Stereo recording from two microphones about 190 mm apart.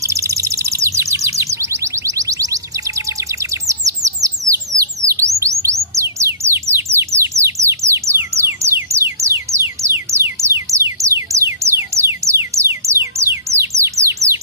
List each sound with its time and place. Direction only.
0.0 s chirp: 15° right (ahead or behind)
5.4 s music: 15° right (ahead or behind)
6.7 s bird: 15° right (ahead or behind)